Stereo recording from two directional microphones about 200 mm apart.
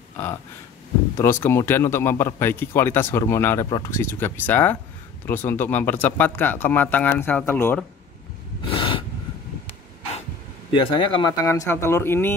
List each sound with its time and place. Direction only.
1.1 s speech: 10° left (ahead or behind)
8.6 s snort: 25° left (ahead or behind)
10.7 s speech: 25° left (ahead or behind)